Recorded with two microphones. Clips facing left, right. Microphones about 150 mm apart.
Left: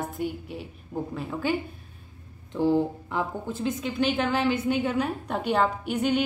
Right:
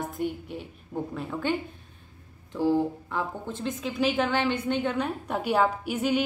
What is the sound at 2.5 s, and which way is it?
A woman's voice, 20° left (ahead or behind).